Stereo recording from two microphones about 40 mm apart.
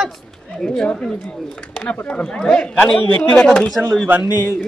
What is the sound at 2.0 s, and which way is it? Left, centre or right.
Speech, left.